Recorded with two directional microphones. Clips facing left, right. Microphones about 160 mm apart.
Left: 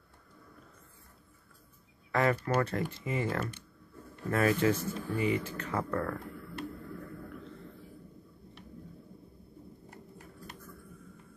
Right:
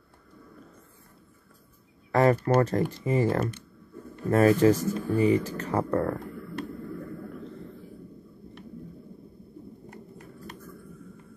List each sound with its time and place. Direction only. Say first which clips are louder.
2.1 s speech: right 7 dB; 35° right (ahead or behind)